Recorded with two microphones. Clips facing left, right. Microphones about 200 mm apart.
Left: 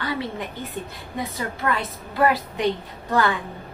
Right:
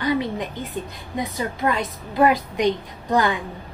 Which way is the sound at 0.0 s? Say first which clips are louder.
Right 5 dB; 20° right (ahead or behind).